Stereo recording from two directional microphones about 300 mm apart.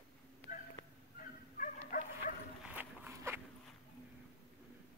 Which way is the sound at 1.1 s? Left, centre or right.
Left.